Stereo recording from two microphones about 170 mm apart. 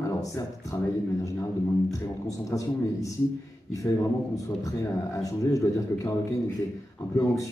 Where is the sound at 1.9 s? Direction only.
20° left (ahead or behind).